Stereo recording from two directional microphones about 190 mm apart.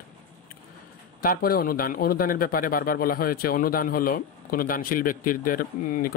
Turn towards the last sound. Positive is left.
turn(degrees=50)  # may be behind; listen again after turning